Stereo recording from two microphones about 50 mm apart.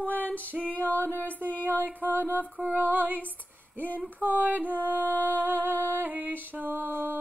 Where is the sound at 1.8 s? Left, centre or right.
Right.